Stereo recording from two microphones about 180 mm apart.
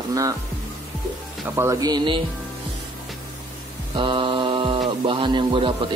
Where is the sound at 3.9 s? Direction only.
25° right (ahead or behind).